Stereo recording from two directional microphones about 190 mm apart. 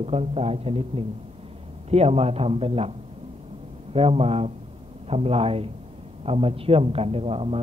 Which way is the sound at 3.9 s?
30° right (ahead or behind).